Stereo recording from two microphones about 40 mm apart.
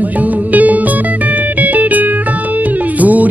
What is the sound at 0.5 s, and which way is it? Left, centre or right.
Music, right.